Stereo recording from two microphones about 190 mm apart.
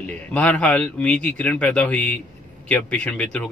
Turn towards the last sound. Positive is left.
turn(degrees=5)  # may be behind; listen again after turning